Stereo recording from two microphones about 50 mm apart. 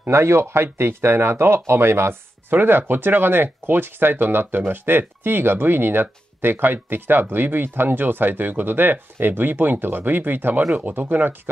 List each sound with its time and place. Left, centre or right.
0.1 s speech: right
2.5 s speech: right